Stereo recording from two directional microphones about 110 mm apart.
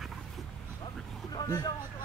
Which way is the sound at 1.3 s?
40° left (ahead or behind).